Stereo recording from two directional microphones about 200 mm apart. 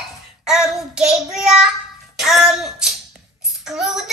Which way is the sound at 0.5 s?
5° right (ahead or behind).